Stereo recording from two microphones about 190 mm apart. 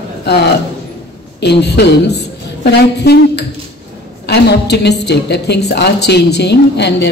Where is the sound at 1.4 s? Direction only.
60° left (ahead or behind).